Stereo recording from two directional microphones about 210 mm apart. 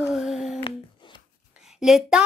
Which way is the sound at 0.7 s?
20° left (ahead or behind).